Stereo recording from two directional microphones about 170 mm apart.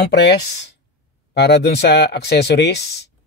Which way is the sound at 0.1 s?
80° left.